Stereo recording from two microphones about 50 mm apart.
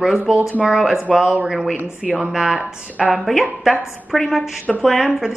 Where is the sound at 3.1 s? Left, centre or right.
Centre.